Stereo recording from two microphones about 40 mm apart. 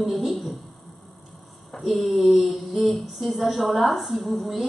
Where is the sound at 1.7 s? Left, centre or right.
Centre.